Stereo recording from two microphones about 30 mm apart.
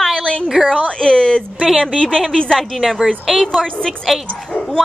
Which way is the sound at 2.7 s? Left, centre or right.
Centre.